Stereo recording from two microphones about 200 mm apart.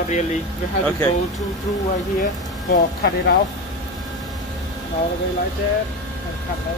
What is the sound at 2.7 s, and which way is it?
Speech, 50° left (ahead or behind).